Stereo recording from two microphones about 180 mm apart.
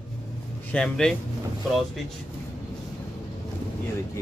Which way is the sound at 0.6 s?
5° left (ahead or behind).